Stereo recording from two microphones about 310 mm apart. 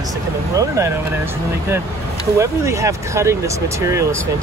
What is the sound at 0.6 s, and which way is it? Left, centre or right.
Speech, centre.